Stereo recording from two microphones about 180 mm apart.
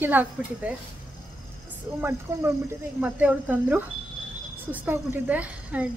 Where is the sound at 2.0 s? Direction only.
15° right (ahead or behind).